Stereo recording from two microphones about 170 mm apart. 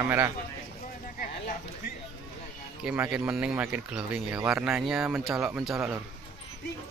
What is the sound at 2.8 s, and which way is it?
Speech, 5° right (ahead or behind).